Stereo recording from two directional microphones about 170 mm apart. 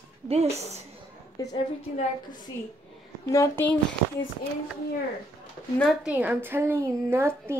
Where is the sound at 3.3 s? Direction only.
20° left (ahead or behind).